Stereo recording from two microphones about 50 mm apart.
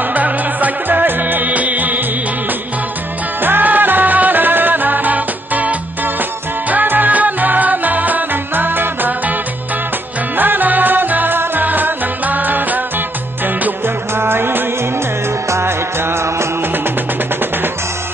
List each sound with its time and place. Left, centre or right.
0.1 s music: right
3.4 s music: right
10.3 s music: right
14.1 s music: right